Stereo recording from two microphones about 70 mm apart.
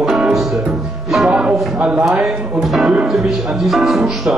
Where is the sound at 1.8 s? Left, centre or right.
Centre.